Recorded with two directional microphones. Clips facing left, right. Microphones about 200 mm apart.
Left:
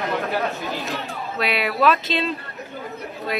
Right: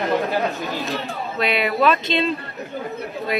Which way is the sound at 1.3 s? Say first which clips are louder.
Right 2 dB; 5° left (ahead or behind).